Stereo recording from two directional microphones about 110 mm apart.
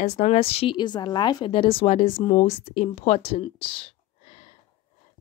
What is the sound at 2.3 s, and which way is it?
Speech, 85° left.